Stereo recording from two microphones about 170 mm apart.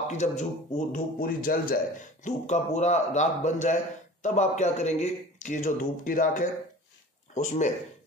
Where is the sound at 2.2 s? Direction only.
45° left (ahead or behind).